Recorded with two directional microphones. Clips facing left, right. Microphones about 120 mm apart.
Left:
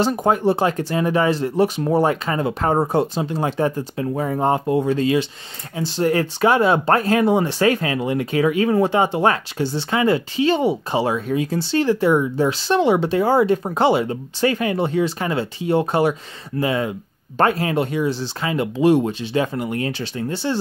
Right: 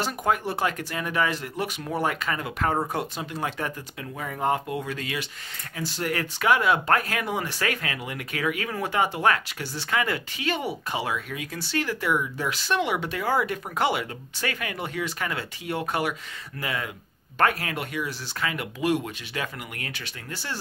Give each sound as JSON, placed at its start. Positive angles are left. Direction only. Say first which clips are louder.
{"t": 0.0, "sound": "speech", "louder": "left 8 dB", "side_deg": 30}